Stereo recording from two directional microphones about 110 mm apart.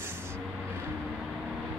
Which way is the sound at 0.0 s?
20° right (ahead or behind).